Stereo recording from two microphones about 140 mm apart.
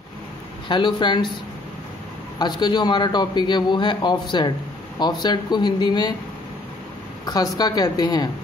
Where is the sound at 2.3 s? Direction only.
30° left (ahead or behind).